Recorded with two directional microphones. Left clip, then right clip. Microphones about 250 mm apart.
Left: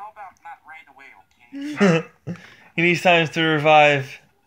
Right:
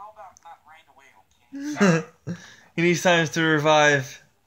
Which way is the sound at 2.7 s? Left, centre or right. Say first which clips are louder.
Left 3 dB; centre.